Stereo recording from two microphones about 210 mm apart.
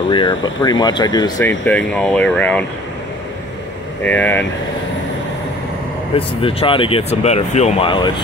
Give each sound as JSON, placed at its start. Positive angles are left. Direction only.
{"t": 0.1, "sound": "speech", "side_deg": 20}
{"t": 1.7, "sound": "speech", "side_deg": 5}
{"t": 4.0, "sound": "speech", "side_deg": 10}
{"t": 6.1, "sound": "speech", "side_deg": 25}